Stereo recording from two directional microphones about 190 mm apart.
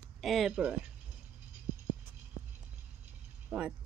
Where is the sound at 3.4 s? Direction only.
5° right (ahead or behind).